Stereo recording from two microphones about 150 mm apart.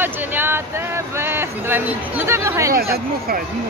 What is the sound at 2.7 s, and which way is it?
Speech, 80° right.